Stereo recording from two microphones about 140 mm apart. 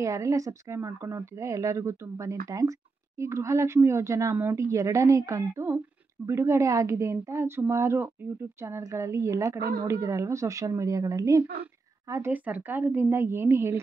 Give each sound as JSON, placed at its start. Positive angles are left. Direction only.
{"t": 0.0, "sound": "speech", "side_deg": -25}
{"t": 9.6, "sound": "speech", "side_deg": -90}
{"t": 9.8, "sound": "a woman's voice", "side_deg": -20}